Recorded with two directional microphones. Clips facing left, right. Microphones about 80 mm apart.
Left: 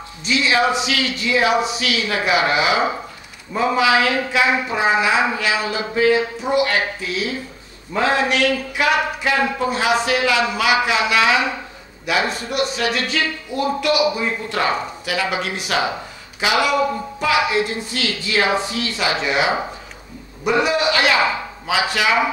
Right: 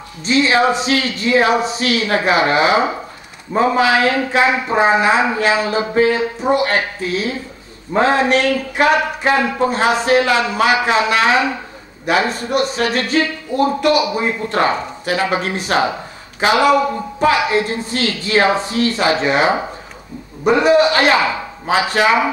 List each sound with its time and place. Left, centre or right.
0.2 s a woman's voice: right